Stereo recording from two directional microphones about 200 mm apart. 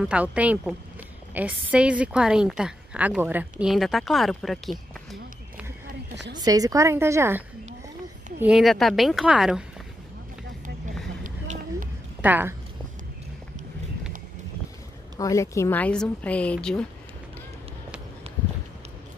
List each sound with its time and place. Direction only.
0.0 s a woman's voice: 5° right (ahead or behind)
6.3 s a woman's voice: 20° right (ahead or behind)
11.2 s a sound: 40° right (ahead or behind)
12.2 s a woman's voice: 10° right (ahead or behind)
15.1 s a woman's voice: 15° left (ahead or behind)